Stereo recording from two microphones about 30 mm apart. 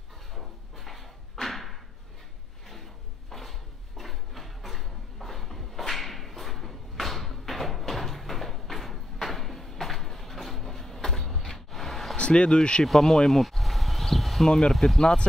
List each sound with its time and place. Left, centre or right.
0.3 s a sound: centre
12.2 s speech: left
12.8 s speech: centre
13.3 s a sound: centre
14.7 s speech: centre
15.0 s speech: left